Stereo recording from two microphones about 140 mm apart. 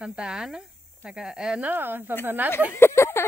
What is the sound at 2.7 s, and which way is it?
Speech, 20° left (ahead or behind).